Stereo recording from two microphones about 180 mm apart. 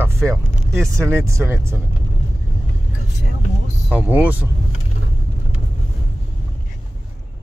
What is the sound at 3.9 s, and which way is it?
Speech, 10° right (ahead or behind).